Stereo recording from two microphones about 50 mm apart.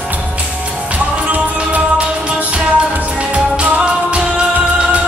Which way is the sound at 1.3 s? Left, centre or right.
Right.